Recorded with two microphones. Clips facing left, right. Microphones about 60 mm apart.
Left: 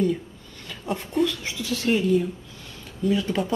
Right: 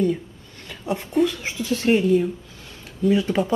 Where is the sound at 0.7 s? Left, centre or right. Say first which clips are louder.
Right 2 dB; centre.